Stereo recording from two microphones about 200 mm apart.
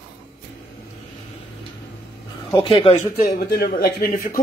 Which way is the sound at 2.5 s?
25° left (ahead or behind).